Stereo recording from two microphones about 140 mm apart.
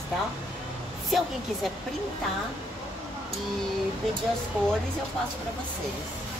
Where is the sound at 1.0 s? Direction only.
Centre (ahead or behind).